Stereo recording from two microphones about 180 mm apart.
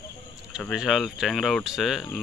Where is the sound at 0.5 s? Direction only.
Centre (ahead or behind).